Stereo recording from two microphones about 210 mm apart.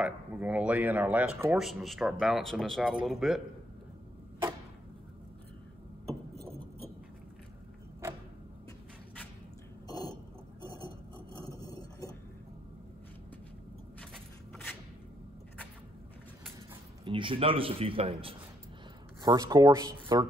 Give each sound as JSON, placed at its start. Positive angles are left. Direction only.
{"t": 0.0, "sound": "speech", "side_deg": -5}
{"t": 9.8, "sound": "a sound", "side_deg": 20}
{"t": 17.0, "sound": "speech", "side_deg": -25}